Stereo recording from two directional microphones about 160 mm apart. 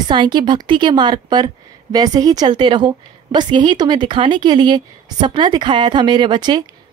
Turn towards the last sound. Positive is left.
turn(degrees=-30)  # may be behind; listen again after turning